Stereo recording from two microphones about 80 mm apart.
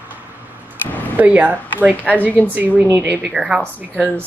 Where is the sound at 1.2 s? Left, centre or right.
Centre.